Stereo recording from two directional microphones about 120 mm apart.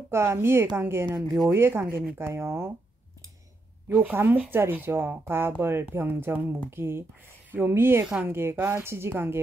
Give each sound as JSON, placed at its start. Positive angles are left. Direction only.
{"t": 0.1, "sound": "speech", "side_deg": -20}
{"t": 3.9, "sound": "speech", "side_deg": -20}